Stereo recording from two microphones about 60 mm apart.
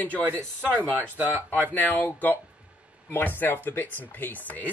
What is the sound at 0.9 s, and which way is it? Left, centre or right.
Speech, right.